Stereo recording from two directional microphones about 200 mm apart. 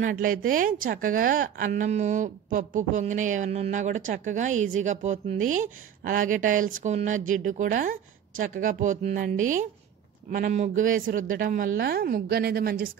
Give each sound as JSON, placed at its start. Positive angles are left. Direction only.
{"t": 0.0, "sound": "a woman's voice", "side_deg": -45}